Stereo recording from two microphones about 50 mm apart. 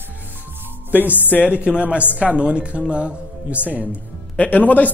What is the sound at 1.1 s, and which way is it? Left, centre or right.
Speech, left.